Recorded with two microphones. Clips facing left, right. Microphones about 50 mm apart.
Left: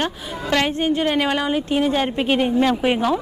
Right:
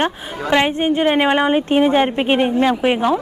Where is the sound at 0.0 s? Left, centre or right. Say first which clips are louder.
Right 4 dB; right.